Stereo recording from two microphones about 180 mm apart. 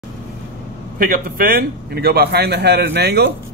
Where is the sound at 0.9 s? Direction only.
50° right (ahead or behind).